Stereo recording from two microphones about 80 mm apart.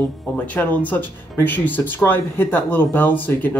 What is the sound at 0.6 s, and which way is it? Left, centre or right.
Speech, left.